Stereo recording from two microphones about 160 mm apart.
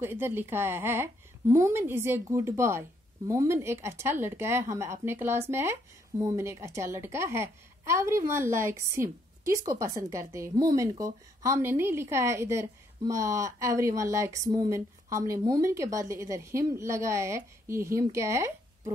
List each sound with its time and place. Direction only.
0.0 s speech: 15° right (ahead or behind)